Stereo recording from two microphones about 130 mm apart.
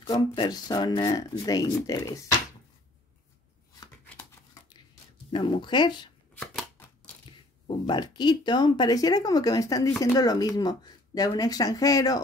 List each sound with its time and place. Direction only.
0.0 s speech: 35° left (ahead or behind)
4.0 s a sound: 15° left (ahead or behind)
5.3 s speech: 35° left (ahead or behind)
6.3 s shuffling cards: 10° left (ahead or behind)
7.2 s speech: 35° left (ahead or behind)